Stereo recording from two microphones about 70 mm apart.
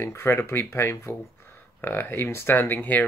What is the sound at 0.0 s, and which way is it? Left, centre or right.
Speech, left.